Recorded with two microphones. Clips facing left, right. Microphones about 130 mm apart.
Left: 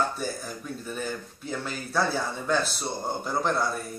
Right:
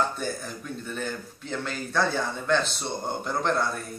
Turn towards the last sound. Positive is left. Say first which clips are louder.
# even
turn(degrees=5)  # may be behind; listen again after turning